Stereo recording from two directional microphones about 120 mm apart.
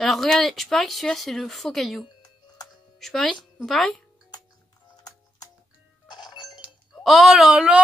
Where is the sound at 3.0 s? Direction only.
Centre (ahead or behind).